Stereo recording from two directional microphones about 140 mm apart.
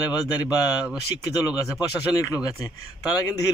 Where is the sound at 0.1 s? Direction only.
30° left (ahead or behind).